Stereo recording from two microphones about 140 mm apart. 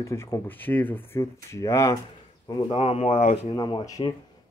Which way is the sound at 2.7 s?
45° left (ahead or behind).